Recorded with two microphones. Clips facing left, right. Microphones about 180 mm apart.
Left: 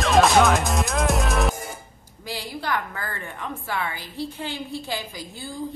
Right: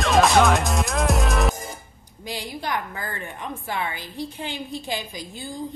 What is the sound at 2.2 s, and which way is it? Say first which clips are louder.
A woman's voice: even; 20° right (ahead or behind).